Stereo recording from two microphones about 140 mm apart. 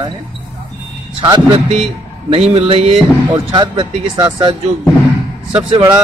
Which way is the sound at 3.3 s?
35° right (ahead or behind).